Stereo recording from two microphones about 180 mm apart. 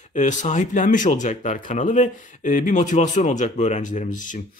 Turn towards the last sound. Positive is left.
turn(degrees=45)  # may be behind; listen again after turning